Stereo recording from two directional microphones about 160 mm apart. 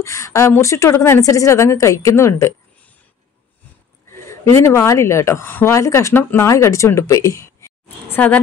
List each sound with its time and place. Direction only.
0.0 s a woman's voice: 20° left (ahead or behind)
4.1 s a woman's voice: 15° left (ahead or behind)
8.1 s speech: 10° left (ahead or behind)